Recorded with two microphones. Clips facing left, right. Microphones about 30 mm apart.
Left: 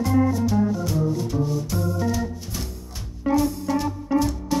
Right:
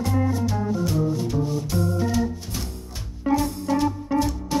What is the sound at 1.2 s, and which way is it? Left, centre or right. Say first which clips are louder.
Music: even; centre.